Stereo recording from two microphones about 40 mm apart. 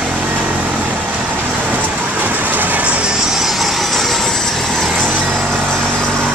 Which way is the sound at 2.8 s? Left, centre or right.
Right.